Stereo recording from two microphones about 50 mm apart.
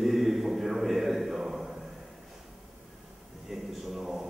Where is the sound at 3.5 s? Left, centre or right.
Centre.